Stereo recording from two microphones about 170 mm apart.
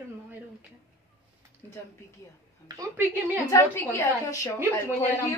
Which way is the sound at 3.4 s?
15° left (ahead or behind).